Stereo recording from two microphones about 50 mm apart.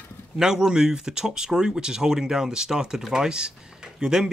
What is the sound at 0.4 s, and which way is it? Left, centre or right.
Speech, centre.